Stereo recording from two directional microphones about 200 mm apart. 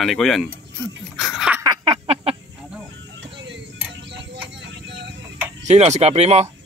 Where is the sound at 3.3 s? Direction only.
60° right (ahead or behind).